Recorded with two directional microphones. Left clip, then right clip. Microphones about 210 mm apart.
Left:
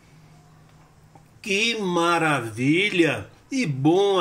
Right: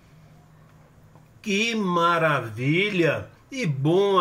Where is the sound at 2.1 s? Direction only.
25° left (ahead or behind).